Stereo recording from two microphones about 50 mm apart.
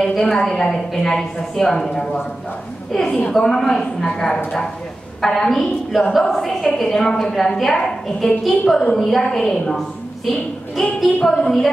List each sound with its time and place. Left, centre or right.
0.0 s a woman's voice: centre
7.7 s a woman's voice: centre
11.1 s a woman's voice: centre